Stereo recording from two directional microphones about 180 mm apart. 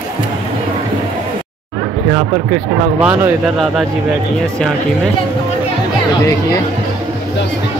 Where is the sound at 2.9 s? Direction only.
10° right (ahead or behind).